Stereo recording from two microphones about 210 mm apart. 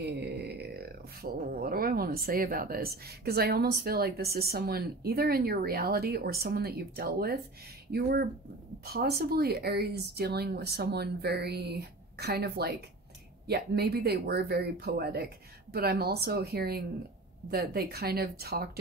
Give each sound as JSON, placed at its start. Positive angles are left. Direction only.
{"t": 0.1, "sound": "speech", "side_deg": -50}